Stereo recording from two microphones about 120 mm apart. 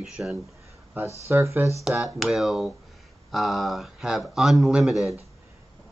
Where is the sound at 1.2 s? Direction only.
20° right (ahead or behind).